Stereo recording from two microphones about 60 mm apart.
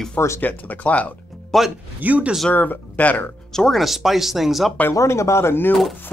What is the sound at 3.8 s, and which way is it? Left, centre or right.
Speech, centre.